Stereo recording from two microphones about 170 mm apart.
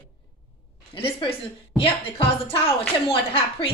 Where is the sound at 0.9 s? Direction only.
30° left (ahead or behind).